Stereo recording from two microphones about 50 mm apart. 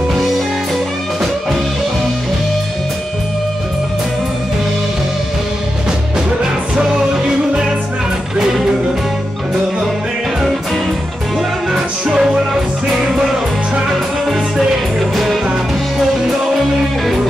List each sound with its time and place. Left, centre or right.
6.4 s music: centre
11.7 s music: centre
13.8 s music: centre